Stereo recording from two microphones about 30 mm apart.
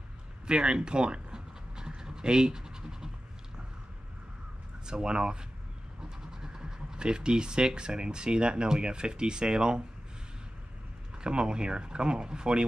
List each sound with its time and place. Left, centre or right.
0.5 s pant: right
4.8 s speech: right
11.1 s speech: right